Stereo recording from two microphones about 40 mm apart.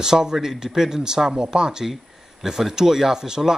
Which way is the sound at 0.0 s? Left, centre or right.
Centre.